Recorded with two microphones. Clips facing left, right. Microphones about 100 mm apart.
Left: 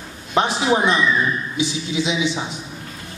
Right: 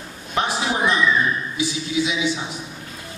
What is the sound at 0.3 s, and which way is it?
A man's voice, 25° left (ahead or behind).